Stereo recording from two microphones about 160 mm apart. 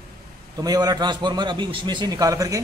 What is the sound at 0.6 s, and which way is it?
A man's voice, 25° right (ahead or behind).